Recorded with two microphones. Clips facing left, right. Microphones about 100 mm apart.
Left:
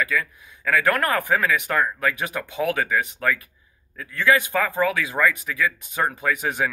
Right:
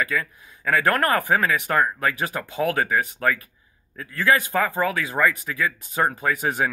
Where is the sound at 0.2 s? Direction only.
Centre (ahead or behind).